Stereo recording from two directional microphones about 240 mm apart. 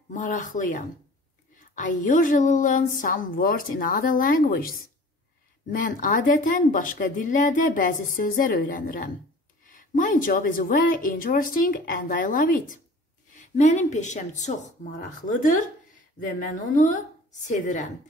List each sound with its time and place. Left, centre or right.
0.1 s speech: left